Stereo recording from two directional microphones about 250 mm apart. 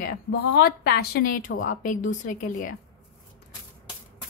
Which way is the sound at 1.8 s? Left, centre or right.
Left.